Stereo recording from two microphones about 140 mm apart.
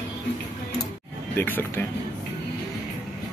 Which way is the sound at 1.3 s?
15° left (ahead or behind).